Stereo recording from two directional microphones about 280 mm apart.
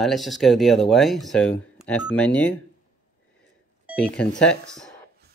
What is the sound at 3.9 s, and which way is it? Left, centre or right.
Speech, centre.